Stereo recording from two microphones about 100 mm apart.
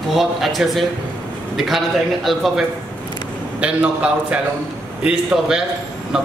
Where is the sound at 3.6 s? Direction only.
15° right (ahead or behind).